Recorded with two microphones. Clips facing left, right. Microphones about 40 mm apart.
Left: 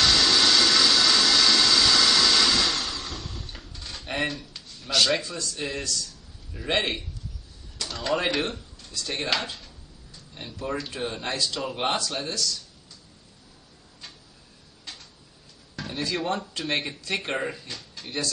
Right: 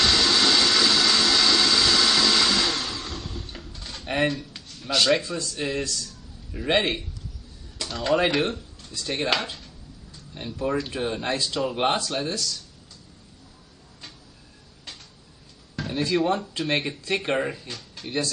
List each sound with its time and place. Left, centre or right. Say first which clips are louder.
0.0 s a sound: even; centre
5.6 s speech: right 3 dB; centre
11.3 s speech: right 2 dB; right
11.6 s speech: right 5 dB; centre
15.7 s a sound: right 5 dB; centre
16.2 s speech: right 6 dB; centre